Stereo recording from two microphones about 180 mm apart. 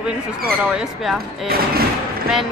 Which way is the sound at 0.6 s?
5° right (ahead or behind).